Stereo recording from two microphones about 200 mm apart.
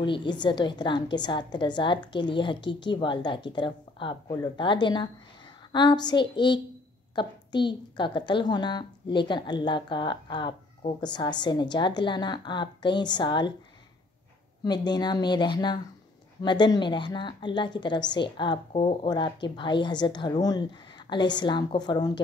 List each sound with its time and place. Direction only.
0.0 s a woman's voice: 25° left (ahead or behind)
14.6 s a woman's voice: 20° left (ahead or behind)